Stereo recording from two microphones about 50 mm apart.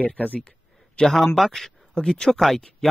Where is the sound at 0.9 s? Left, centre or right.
Centre.